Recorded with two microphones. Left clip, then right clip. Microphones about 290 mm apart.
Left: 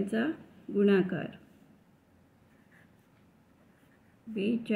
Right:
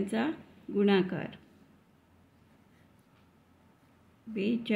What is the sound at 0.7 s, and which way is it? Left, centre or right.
Speech, centre.